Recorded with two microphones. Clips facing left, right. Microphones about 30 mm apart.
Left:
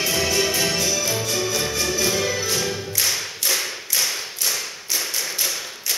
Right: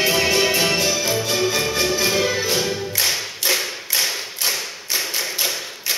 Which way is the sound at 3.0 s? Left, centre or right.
Right.